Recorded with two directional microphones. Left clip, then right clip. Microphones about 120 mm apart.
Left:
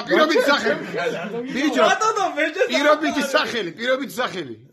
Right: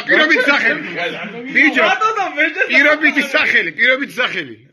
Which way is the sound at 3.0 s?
30° left (ahead or behind).